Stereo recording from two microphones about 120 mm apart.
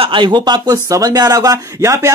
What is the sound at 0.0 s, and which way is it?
Speech, 45° right (ahead or behind).